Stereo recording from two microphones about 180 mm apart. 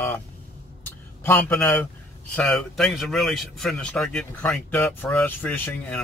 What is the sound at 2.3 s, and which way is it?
Speech, 5° left (ahead or behind).